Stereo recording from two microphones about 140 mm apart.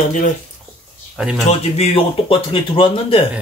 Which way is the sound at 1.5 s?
45° left (ahead or behind).